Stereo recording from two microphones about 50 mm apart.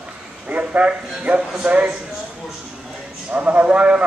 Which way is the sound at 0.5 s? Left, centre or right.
Right.